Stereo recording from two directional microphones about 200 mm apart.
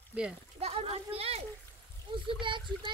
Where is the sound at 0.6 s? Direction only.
30° right (ahead or behind).